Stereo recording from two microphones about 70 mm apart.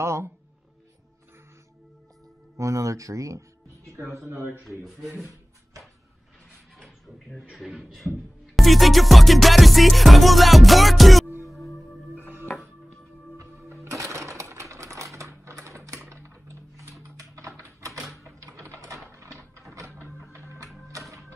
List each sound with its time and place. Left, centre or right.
0.0 s speech: right
2.5 s speech: right
4.3 s a man's voice: right
4.6 s speech: centre
7.5 s speech: centre
8.5 s music: centre
13.4 s music: right
13.8 s sewing machine: right
16.1 s typing: right
17.9 s a sound: centre
18.2 s typing: right
20.2 s music: right